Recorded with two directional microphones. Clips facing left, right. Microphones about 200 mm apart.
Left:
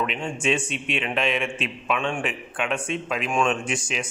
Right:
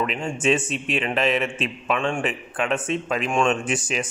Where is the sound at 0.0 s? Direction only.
Centre (ahead or behind).